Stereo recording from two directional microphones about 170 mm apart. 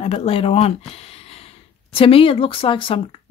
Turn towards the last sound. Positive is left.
turn(degrees=30)  # may be behind; listen again after turning